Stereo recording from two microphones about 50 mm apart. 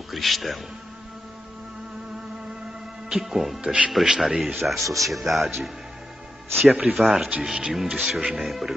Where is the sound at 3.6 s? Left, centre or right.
Right.